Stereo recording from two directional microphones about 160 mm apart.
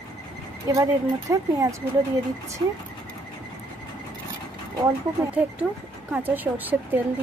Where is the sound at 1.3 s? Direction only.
20° right (ahead or behind).